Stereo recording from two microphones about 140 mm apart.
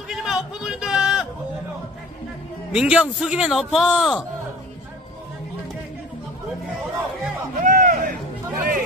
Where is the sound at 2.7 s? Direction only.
5° right (ahead or behind).